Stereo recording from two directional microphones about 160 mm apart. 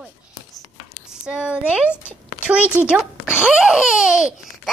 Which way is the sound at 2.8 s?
10° right (ahead or behind).